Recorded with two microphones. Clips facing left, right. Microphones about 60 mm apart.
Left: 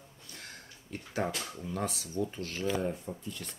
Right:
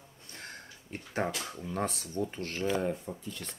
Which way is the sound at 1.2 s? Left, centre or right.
Centre.